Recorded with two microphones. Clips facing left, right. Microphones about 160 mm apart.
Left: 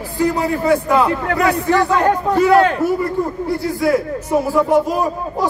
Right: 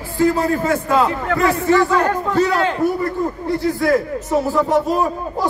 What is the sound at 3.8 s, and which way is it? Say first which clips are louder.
Speech: left 3 dB; 10° left (ahead or behind).